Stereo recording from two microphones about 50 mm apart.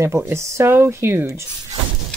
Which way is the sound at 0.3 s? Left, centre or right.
Right.